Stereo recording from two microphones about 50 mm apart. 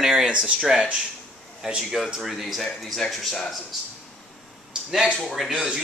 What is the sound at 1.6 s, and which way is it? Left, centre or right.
Speech, centre.